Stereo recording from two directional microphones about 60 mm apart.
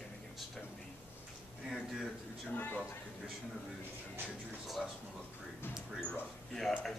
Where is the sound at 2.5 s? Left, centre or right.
Left.